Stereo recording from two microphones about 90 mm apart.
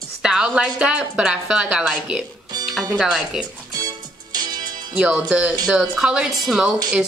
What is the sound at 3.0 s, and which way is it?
Speech, 5° right (ahead or behind).